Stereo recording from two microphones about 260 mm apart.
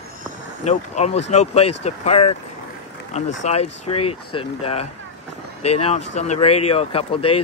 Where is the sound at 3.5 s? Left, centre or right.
Left.